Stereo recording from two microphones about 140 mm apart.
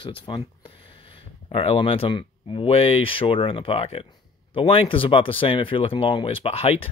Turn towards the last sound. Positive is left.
turn(degrees=45)  # may be behind; listen again after turning